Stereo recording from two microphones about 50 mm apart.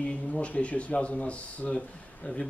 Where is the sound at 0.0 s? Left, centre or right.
Left.